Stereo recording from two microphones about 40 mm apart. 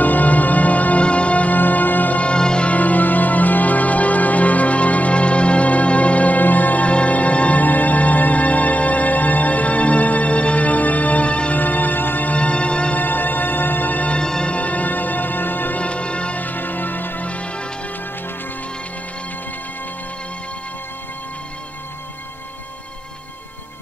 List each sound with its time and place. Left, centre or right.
0.0 s music: left
1.6 s music: left
2.2 s music: left
2.7 s music: left
7.6 s music: left
11.5 s music: left
12.3 s music: left
12.9 s music: left
14.1 s music: left
14.5 s music: left
15.8 s music: left
16.3 s music: left
17.3 s music: left